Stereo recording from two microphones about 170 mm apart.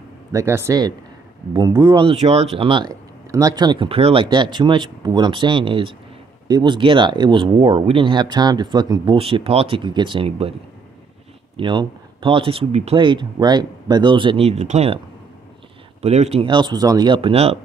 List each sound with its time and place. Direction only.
0.3 s speech: 15° right (ahead or behind); by 10.5 s 30° right (ahead or behind)
11.5 s speech: 30° right (ahead or behind)
16.0 s speech: 40° right (ahead or behind)